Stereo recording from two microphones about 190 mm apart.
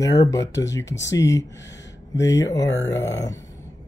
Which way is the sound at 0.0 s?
20° left (ahead or behind).